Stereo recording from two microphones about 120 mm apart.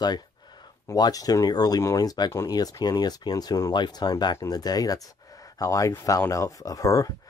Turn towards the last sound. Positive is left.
turn(degrees=25)  # may be behind; listen again after turning